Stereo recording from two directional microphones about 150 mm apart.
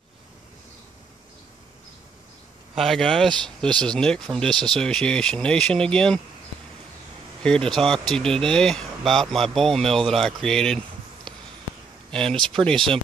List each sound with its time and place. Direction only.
2.7 s speech: centre (ahead or behind)
7.4 s speech: 5° left (ahead or behind)
11.3 s a sound: 5° left (ahead or behind)
12.1 s speech: 5° left (ahead or behind)